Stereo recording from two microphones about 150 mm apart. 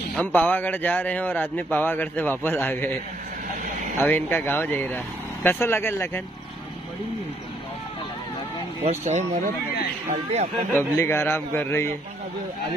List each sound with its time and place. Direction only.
0.1 s a man's voice: 10° left (ahead or behind)
4.0 s a man's voice: 15° left (ahead or behind)
8.8 s speech: 50° right (ahead or behind)
10.8 s a man's voice: 15° left (ahead or behind)